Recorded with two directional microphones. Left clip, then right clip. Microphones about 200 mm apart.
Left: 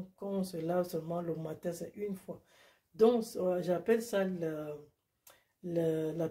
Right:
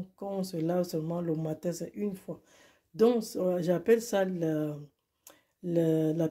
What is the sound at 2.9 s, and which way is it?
Speech, 35° right (ahead or behind).